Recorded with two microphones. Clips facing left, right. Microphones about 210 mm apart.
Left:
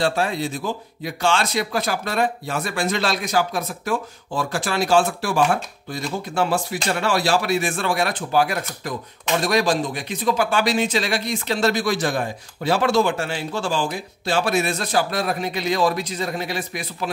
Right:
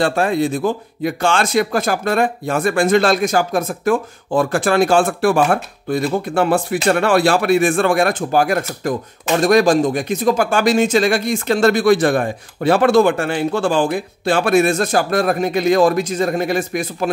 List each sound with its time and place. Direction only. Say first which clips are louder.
0.0 s speech: right 6 dB; 55° right (ahead or behind)